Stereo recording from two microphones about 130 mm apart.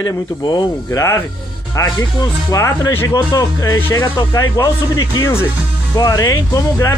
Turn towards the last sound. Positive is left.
turn(degrees=25)  # may be behind; listen again after turning